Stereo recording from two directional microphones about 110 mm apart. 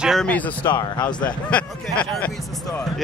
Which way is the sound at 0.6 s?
40° left (ahead or behind).